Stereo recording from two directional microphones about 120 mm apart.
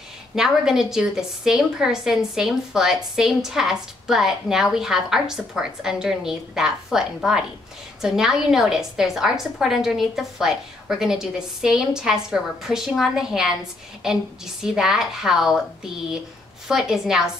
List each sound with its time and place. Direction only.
0.4 s a woman's voice: 5° right (ahead or behind)